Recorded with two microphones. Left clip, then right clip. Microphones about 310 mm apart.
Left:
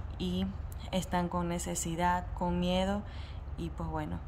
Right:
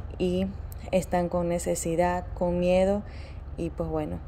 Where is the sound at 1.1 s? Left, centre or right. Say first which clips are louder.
Right 7 dB; left.